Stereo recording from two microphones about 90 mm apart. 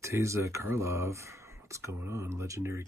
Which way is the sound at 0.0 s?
35° right (ahead or behind).